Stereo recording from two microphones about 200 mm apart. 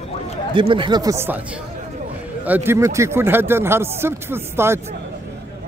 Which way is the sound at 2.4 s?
10° right (ahead or behind).